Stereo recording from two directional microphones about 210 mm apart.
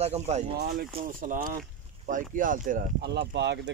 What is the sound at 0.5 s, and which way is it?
Speech, 50° right (ahead or behind).